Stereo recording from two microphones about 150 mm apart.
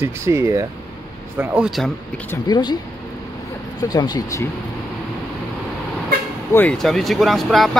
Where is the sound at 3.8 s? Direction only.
25° left (ahead or behind).